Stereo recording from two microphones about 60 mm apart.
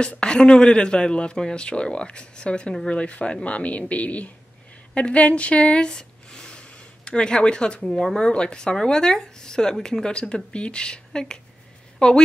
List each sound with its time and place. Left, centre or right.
0.2 s speech: centre